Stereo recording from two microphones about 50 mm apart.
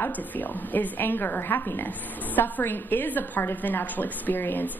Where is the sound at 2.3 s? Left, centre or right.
Left.